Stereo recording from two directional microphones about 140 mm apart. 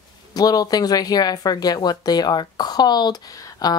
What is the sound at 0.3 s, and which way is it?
A woman's voice, 25° left (ahead or behind).